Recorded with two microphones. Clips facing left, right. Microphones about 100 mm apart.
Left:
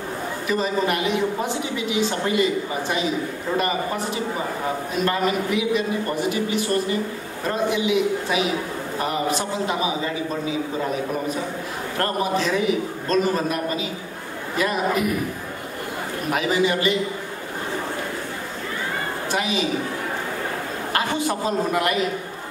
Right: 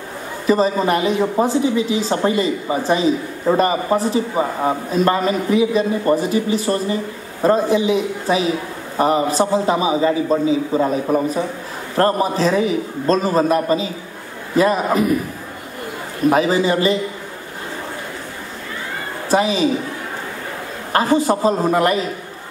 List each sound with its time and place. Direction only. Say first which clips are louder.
0.5 s a woman's voice: right 7 dB; 35° right (ahead or behind)
12.0 s a woman's voice: right 7 dB; 35° right (ahead or behind)
16.3 s a woman's voice: right 6 dB; 35° right (ahead or behind)
19.3 s a woman's voice: right 8 dB; 35° right (ahead or behind)
20.9 s a woman's voice: right 8 dB; 35° right (ahead or behind)